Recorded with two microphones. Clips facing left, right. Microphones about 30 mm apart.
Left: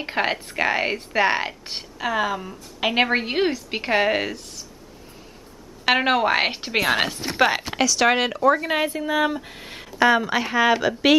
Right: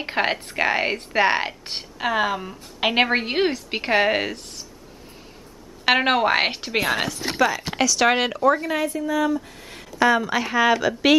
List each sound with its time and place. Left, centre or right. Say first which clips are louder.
0.0 s speech: right 1 dB; centre
5.9 s a woman's voice: right 1 dB; centre
6.7 s speech: left 5 dB; centre
7.3 s a woman's voice: left 2 dB; left
7.7 s a woman's voice: even; centre
8.5 s a woman's voice: left 1 dB; left; by 11.1 s centre